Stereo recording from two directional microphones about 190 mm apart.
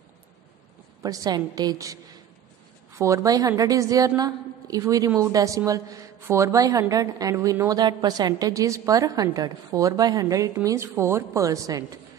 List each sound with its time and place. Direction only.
1.0 s a woman's voice: 20° right (ahead or behind)
3.0 s a woman's voice: 15° right (ahead or behind)